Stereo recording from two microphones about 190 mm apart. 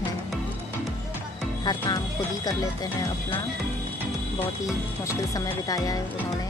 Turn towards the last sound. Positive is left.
turn(degrees=20)  # may be behind; listen again after turning